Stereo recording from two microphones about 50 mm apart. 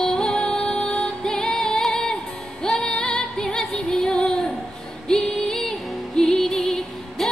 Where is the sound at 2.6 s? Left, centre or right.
Centre.